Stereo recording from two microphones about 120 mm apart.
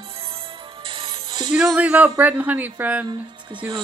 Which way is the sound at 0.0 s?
55° right (ahead or behind).